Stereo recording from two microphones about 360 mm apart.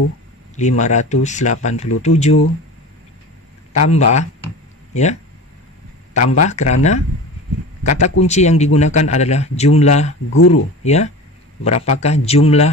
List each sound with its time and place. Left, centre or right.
0.6 s speech: centre
3.9 s speech: centre
6.1 s speech: centre
10.3 s speech: left
10.8 s a man's voice: centre